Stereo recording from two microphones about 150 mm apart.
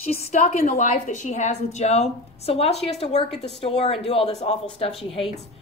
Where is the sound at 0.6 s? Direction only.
55° left (ahead or behind); by 4.6 s 40° left (ahead or behind).